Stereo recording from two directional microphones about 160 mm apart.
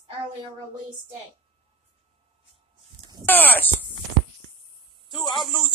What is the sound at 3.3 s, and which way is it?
Speech, 10° left (ahead or behind).